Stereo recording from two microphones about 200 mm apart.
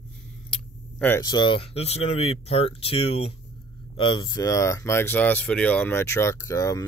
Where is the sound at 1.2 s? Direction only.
20° left (ahead or behind).